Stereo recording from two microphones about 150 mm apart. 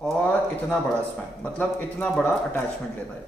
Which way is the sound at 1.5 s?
10° left (ahead or behind).